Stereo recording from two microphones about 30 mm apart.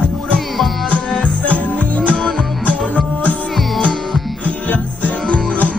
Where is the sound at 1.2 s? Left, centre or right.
Left.